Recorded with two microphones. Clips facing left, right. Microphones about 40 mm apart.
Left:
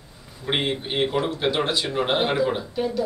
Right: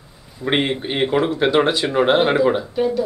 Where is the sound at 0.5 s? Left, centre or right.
Centre.